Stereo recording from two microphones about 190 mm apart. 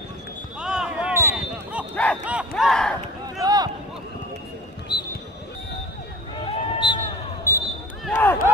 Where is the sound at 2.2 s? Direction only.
5° right (ahead or behind).